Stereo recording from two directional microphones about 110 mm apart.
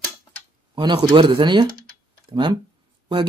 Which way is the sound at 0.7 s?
45° right (ahead or behind).